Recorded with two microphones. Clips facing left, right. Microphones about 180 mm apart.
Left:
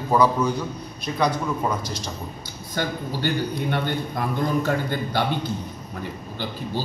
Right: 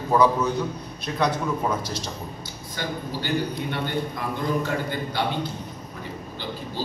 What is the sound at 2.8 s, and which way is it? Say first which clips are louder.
Speech: left 5 dB; 50° left (ahead or behind).